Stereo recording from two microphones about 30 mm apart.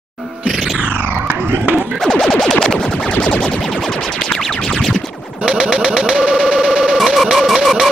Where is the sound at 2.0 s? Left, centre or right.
Left.